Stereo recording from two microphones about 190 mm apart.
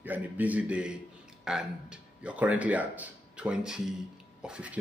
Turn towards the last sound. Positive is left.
turn(degrees=-5)  # may be behind; listen again after turning